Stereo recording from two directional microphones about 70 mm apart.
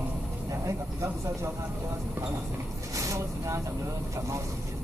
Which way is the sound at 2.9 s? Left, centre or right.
Right.